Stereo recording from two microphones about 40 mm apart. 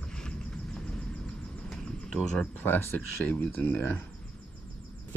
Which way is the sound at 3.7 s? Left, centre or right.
Left.